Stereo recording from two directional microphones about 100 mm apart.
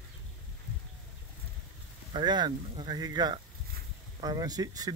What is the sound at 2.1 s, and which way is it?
Speech, 50° right (ahead or behind).